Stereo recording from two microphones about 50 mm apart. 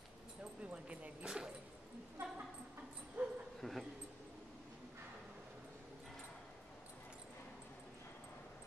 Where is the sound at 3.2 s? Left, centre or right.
Right.